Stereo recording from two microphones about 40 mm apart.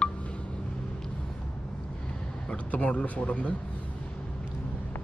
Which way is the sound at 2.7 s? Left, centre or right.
Left.